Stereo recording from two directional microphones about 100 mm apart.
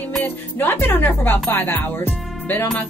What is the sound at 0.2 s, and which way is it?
Speech, 20° left (ahead or behind).